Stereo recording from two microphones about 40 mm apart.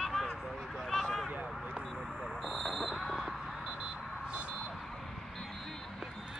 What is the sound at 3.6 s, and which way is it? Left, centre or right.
Vehicle, right.